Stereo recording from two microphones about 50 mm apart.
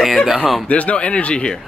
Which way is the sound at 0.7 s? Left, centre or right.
Left.